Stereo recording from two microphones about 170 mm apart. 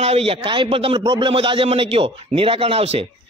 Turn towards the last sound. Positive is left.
turn(degrees=-35)  # may be behind; listen again after turning